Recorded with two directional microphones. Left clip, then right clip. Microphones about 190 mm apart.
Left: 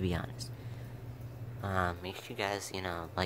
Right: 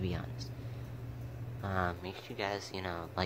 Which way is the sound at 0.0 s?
30° left (ahead or behind).